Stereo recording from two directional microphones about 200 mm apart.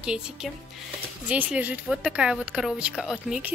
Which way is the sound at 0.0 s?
5° right (ahead or behind).